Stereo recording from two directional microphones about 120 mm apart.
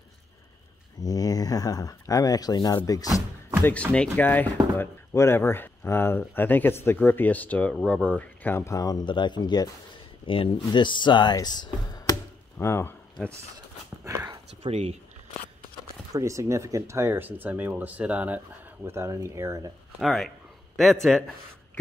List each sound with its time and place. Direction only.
1.0 s speech: 30° left (ahead or behind)
3.6 s speech: 10° left (ahead or behind); by 9.7 s 35° left (ahead or behind)
10.2 s speech: 45° left (ahead or behind)
12.5 s speech: 20° left (ahead or behind)
14.0 s speech: 20° right (ahead or behind)
14.6 s speech: 60° right (ahead or behind)
16.1 s speech: 25° right (ahead or behind)
18.9 s speech: 25° right (ahead or behind)
20.0 s speech: centre (ahead or behind)